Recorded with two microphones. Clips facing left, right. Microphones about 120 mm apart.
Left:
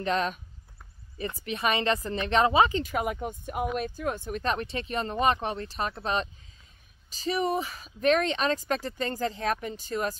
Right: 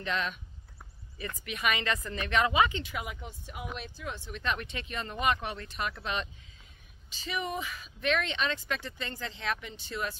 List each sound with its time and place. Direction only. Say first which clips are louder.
0.0 s speech: left 6 dB; 40° left (ahead or behind)